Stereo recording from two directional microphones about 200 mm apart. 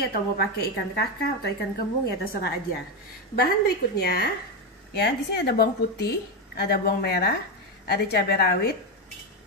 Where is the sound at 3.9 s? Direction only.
55° left (ahead or behind).